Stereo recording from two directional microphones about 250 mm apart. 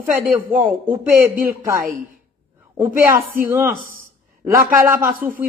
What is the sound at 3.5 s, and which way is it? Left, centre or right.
Speech, centre.